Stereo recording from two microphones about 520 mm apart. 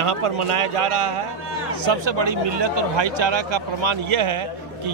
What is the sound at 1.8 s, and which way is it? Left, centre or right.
Speech, right.